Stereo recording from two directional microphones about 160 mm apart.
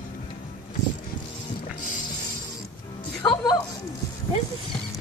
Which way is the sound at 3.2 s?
25° left (ahead or behind).